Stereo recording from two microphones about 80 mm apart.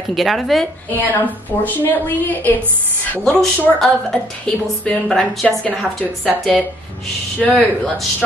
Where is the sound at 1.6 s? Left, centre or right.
Left.